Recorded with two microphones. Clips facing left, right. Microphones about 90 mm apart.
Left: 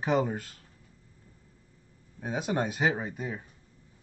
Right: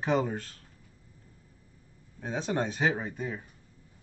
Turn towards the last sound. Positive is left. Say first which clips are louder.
# even
turn(degrees=5)  # may be behind; listen again after turning